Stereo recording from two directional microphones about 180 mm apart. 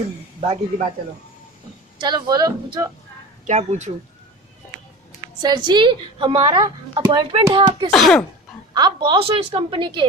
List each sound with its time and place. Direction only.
0.4 s speech: 30° right (ahead or behind)
2.0 s a woman's voice: 25° right (ahead or behind)
3.4 s speech: 40° right (ahead or behind)
5.4 s a woman's voice: 25° right (ahead or behind)
7.9 s speech: 5° left (ahead or behind)
8.7 s a woman's voice: 25° right (ahead or behind)